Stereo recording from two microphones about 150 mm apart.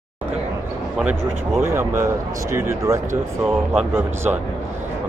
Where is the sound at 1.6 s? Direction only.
15° right (ahead or behind).